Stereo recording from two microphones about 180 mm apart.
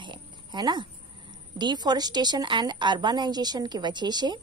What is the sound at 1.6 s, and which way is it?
A woman's voice, 25° right (ahead or behind).